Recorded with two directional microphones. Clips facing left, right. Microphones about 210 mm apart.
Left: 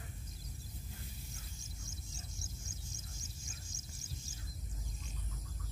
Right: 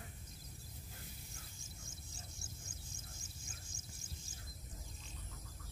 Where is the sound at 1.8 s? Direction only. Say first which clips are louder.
Left 4 dB; 55° right (ahead or behind).